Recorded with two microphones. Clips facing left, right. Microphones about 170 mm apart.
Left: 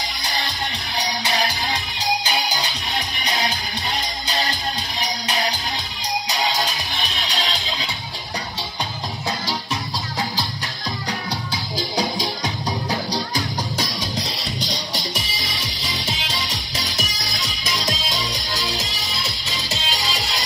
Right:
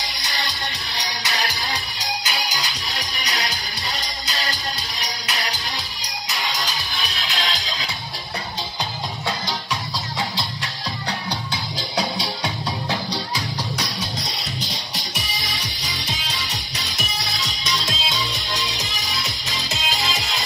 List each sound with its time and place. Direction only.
0.9 s music: 30° left (ahead or behind)
6.2 s music: 30° left (ahead or behind)
17.7 s music: 35° left (ahead or behind)